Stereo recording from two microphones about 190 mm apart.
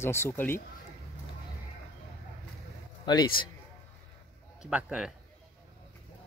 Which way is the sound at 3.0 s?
20° left (ahead or behind).